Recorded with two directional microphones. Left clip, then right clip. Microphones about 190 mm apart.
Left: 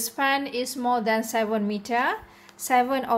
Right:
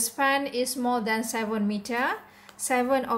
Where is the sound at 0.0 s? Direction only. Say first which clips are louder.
Even; 25° left (ahead or behind).